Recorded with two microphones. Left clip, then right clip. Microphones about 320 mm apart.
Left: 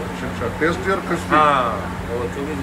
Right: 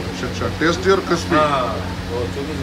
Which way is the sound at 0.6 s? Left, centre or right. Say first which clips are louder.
Right 4 dB; centre.